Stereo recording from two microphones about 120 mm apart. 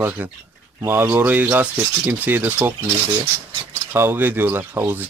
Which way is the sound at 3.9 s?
20° right (ahead or behind).